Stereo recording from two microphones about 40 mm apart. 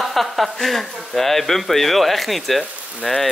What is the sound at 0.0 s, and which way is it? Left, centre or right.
Speech, centre.